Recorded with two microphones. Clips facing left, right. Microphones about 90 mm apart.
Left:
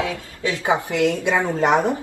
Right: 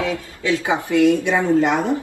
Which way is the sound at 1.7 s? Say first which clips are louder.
Left 1 dB; 20° left (ahead or behind).